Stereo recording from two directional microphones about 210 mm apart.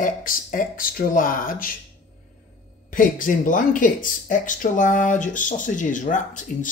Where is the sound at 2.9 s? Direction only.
40° left (ahead or behind).